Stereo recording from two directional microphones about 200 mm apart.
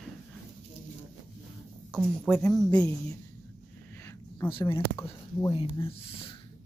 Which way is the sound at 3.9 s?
10° left (ahead or behind).